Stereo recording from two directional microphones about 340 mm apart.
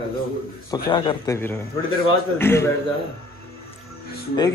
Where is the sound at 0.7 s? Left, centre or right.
Centre.